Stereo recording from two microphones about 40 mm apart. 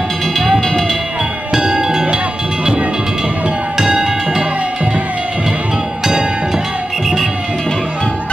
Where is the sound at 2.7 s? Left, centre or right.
Right.